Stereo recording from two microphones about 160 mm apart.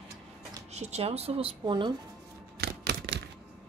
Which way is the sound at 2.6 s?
90° right.